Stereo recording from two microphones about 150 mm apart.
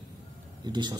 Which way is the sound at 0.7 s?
30° right (ahead or behind).